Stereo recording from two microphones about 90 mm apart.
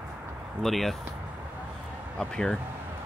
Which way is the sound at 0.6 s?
Centre (ahead or behind).